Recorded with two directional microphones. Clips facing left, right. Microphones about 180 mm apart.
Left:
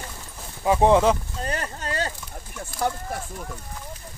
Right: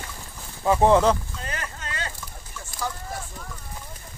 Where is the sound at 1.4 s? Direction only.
35° left (ahead or behind).